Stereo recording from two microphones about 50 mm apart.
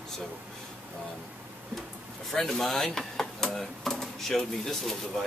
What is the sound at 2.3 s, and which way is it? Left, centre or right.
Speech, centre.